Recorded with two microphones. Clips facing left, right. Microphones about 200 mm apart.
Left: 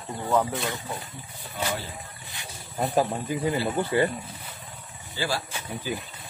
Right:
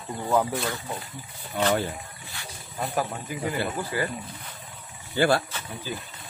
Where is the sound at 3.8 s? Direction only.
25° left (ahead or behind).